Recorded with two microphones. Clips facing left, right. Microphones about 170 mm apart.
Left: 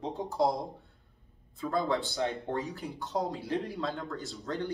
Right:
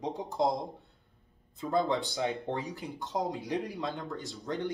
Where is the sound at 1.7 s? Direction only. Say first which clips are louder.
Right 1 dB; 15° right (ahead or behind).